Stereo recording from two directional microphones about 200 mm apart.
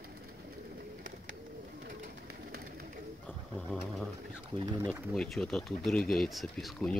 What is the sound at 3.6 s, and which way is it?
Sewing machine, 5° left (ahead or behind).